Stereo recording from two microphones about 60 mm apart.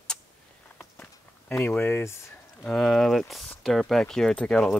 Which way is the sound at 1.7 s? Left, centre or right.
Left.